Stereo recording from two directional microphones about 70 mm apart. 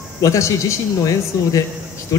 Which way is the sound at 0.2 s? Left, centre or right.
Left.